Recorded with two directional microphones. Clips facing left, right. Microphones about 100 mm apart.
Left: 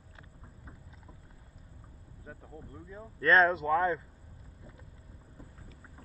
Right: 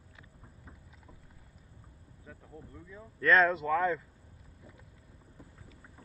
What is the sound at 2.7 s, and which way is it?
Speech, 25° left (ahead or behind).